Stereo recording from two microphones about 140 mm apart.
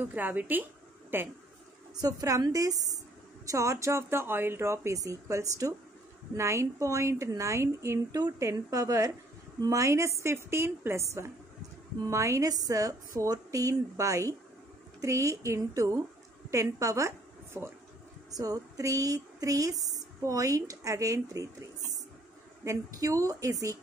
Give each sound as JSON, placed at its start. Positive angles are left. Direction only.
{"t": 0.0, "sound": "speech", "side_deg": -15}
{"t": 2.0, "sound": "a woman's voice", "side_deg": -25}
{"t": 18.3, "sound": "a woman's voice", "side_deg": -25}